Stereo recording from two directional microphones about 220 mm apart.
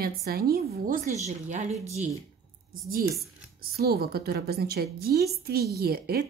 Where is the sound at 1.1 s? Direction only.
30° right (ahead or behind).